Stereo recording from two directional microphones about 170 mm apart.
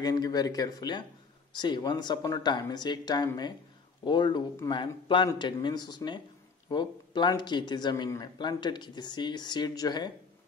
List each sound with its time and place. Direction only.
0.0 s a man's voice: 25° left (ahead or behind)